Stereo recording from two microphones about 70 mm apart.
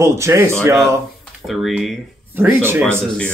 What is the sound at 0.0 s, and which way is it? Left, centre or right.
Speech, right.